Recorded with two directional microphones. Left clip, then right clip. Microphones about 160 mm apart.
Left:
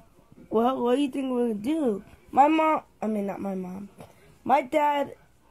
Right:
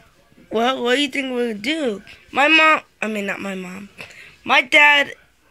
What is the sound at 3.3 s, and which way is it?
Speech, 25° right (ahead or behind).